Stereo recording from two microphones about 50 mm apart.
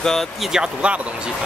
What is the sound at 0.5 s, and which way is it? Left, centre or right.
Speech, centre.